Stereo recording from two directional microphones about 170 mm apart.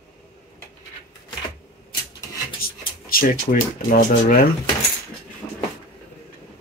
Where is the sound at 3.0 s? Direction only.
55° left (ahead or behind).